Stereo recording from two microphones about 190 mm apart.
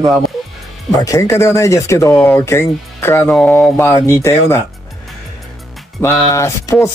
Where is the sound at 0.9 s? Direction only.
20° left (ahead or behind).